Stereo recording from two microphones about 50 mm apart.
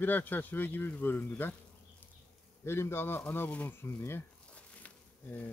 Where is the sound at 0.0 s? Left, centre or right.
Left.